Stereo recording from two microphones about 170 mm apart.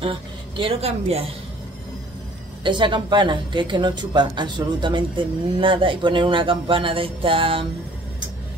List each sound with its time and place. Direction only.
0.0 s a woman's voice: 35° right (ahead or behind)
2.6 s speech: 30° right (ahead or behind)